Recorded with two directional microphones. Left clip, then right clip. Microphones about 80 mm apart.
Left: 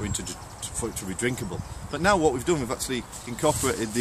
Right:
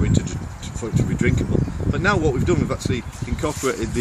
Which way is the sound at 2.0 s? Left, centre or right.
Left.